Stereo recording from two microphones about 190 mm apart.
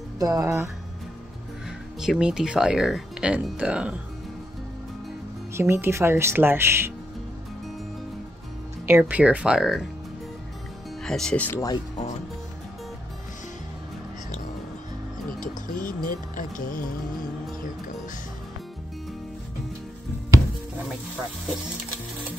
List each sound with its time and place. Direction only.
0.2 s speech: 15° right (ahead or behind)
2.0 s speech: 5° right (ahead or behind)
5.5 s speech: 15° right (ahead or behind)
8.8 s speech: 10° right (ahead or behind)
11.1 s speech: 5° left (ahead or behind)
15.4 s music: 45° left (ahead or behind)